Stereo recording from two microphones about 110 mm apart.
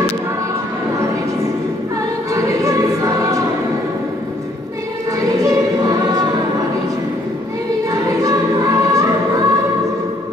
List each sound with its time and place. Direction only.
2.3 s choir: 30° right (ahead or behind)
5.2 s choir: 30° right (ahead or behind)
7.9 s choir: 30° right (ahead or behind)